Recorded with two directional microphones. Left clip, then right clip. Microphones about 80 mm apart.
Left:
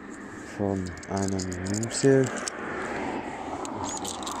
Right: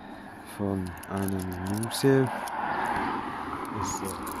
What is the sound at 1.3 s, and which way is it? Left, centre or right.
Speech, right.